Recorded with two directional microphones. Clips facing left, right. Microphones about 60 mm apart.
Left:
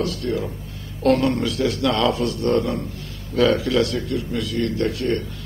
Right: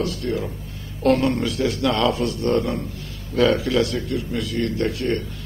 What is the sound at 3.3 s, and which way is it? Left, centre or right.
A man's voice, right.